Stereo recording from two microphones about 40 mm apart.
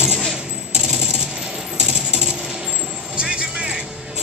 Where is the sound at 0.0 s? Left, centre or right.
Centre.